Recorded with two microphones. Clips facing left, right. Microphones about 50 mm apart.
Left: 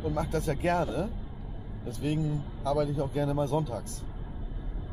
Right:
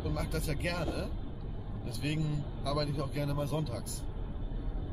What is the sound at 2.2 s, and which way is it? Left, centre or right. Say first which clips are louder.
Speech: left 4 dB; left.